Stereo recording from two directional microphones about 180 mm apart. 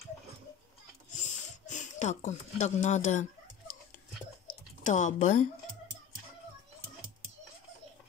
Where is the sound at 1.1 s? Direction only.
40° left (ahead or behind).